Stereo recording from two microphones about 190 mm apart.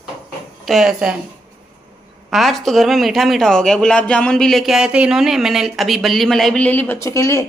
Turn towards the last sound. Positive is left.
turn(degrees=15)  # may be behind; listen again after turning